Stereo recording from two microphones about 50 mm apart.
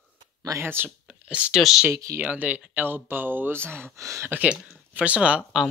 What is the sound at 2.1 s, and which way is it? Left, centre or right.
Speech, right.